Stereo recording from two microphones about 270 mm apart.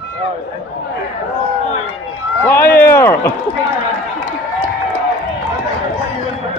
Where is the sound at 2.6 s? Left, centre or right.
Left.